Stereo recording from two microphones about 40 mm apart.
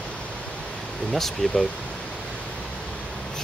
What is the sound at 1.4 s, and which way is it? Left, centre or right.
Speech, centre.